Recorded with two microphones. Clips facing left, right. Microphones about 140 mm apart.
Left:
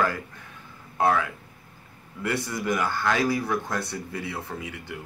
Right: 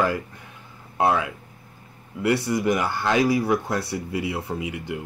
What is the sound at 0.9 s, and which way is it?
Speech, 15° right (ahead or behind).